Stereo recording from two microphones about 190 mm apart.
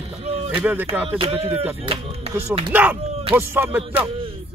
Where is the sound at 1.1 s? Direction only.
30° right (ahead or behind).